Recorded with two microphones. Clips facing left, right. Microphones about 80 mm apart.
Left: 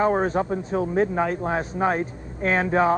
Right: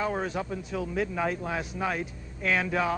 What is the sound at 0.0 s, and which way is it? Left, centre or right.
Speech, left.